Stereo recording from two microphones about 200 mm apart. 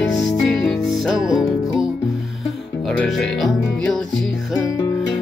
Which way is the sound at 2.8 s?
Centre (ahead or behind).